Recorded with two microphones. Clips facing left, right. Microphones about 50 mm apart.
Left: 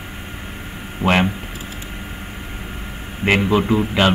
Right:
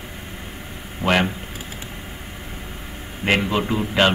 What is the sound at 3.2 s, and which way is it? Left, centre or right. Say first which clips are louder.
Speech: left 4 dB; centre.